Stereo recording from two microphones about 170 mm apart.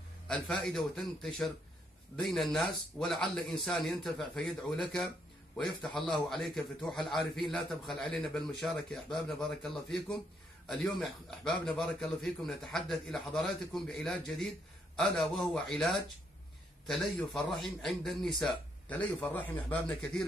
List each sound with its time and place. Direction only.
0.3 s a man's voice: centre (ahead or behind)